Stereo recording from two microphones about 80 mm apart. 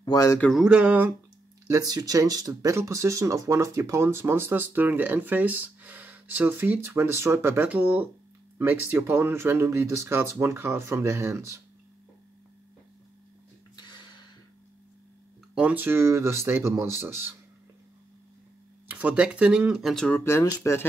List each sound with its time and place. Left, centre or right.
0.0 s speech: left
0.7 s speech: centre
1.7 s speech: right; by 8.1 s centre
8.5 s speech: right
13.7 s a sound: left
15.5 s speech: centre
18.9 s speech: centre
20.1 s speech: left